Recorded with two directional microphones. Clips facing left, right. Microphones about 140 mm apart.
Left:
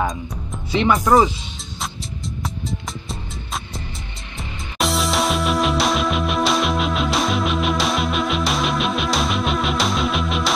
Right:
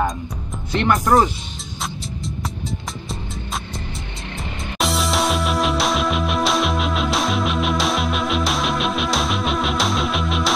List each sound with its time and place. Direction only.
0.7 s speech: centre (ahead or behind)
4.7 s music: centre (ahead or behind)